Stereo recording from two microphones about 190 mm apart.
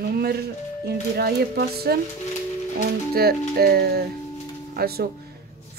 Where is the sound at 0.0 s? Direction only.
55° right (ahead or behind).